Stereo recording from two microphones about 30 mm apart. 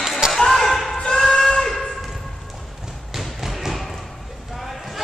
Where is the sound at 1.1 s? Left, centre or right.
Left.